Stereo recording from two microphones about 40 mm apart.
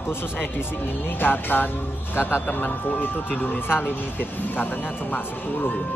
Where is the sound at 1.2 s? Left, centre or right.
Left.